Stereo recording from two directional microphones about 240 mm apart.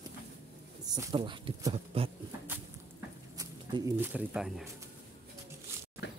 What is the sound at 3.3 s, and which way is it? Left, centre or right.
Speech, centre.